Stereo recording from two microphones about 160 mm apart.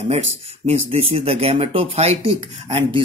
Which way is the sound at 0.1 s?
40° right (ahead or behind).